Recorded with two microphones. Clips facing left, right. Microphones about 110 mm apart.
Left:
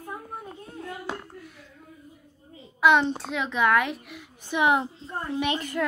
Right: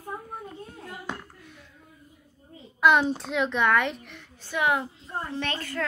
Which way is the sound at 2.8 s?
5° right (ahead or behind).